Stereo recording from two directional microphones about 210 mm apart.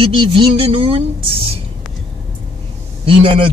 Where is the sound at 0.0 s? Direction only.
25° right (ahead or behind).